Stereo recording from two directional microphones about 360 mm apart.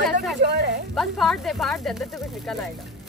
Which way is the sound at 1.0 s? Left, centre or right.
Centre.